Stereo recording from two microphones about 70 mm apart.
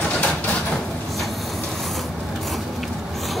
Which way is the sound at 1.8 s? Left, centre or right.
Centre.